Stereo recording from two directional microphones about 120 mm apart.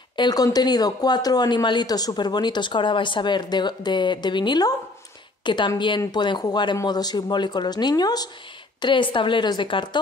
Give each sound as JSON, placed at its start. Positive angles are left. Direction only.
{"t": 0.1, "sound": "a woman's voice", "side_deg": 35}